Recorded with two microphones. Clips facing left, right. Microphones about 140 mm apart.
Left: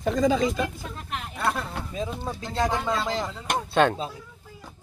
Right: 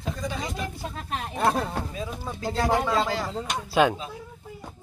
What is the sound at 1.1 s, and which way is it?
Speech, 35° right (ahead or behind).